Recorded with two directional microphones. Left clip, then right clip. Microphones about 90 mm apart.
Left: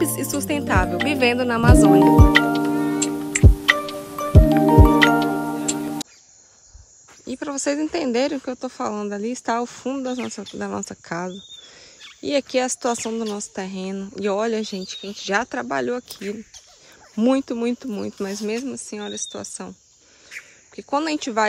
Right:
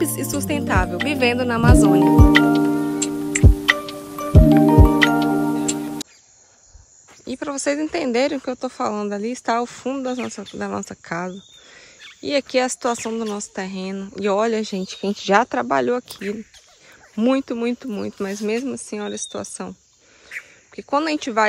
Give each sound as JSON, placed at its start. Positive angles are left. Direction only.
{"t": 0.0, "sound": "music", "side_deg": 0}
{"t": 7.2, "sound": "speech", "side_deg": 30}
{"t": 14.9, "sound": "speech", "side_deg": 0}
{"t": 17.1, "sound": "speech", "side_deg": 35}
{"t": 20.2, "sound": "duck", "side_deg": 30}